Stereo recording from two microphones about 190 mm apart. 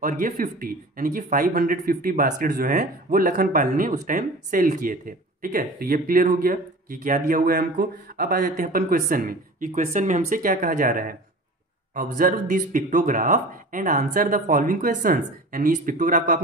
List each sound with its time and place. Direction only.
0.0 s speech: 45° right (ahead or behind)